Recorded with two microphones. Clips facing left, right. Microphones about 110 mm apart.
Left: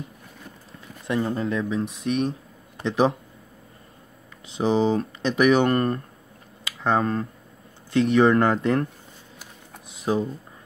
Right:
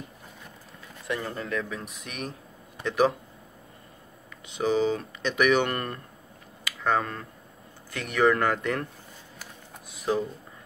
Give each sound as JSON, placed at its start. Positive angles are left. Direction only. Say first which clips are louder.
{"t": 1.0, "sound": "speech", "louder": "left 7 dB", "side_deg": 25}
{"t": 4.5, "sound": "speech", "louder": "left 3 dB", "side_deg": 30}
{"t": 9.8, "sound": "speech", "louder": "left 3 dB", "side_deg": 20}